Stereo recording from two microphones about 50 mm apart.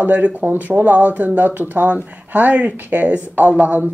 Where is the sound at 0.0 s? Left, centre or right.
Right.